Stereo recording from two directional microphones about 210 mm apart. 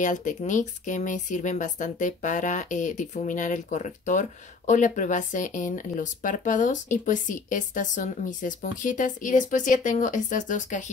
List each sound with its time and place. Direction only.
0.0 s speech: 35° left (ahead or behind)